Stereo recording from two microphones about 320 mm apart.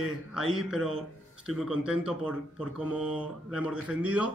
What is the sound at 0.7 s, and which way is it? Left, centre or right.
Speech, right.